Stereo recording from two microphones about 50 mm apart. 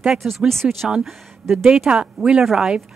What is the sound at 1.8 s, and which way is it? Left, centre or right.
Speech, centre.